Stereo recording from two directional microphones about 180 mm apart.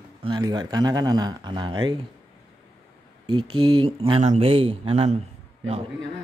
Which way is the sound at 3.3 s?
25° right (ahead or behind).